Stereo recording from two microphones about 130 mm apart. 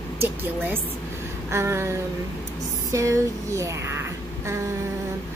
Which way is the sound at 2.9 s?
25° right (ahead or behind).